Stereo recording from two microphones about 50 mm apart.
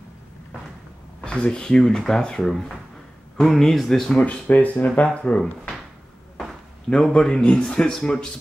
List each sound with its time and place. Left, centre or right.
1.2 s speech: centre
4.2 s speech: left
6.9 s speech: centre